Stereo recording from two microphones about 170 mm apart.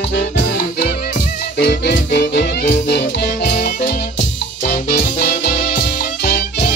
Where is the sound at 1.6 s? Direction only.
75° left (ahead or behind).